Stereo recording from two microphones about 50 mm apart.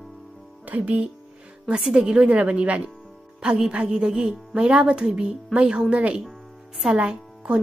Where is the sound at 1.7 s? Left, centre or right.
Centre.